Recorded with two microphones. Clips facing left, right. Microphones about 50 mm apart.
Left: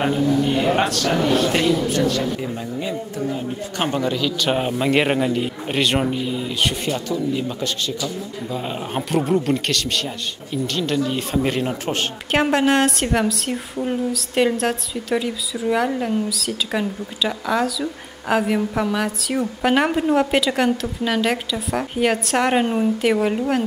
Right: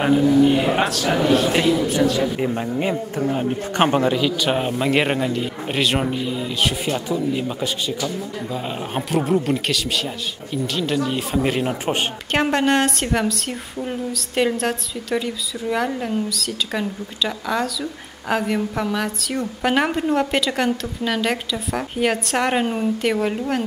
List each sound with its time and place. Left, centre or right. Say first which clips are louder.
0.0 s a man's voice: right 4 dB; centre
2.4 s a man's voice: right 4 dB; right
4.1 s a man's voice: right 2 dB; centre
4.5 s a woman's voice: even; centre
7.1 s a man's voice: even; centre
12.3 s a woman's voice: left 1 dB; centre